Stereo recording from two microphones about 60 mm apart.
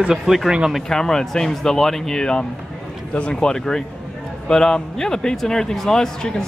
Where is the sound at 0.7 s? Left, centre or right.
Centre.